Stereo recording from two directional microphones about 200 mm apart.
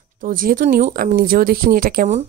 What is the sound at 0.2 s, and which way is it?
Speech, 45° right (ahead or behind).